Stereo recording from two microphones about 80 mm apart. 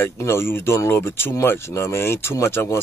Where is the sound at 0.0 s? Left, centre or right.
Left.